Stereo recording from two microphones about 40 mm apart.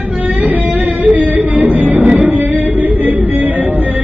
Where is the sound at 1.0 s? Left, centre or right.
Right.